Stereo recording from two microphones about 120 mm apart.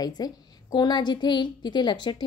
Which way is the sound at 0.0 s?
35° left (ahead or behind).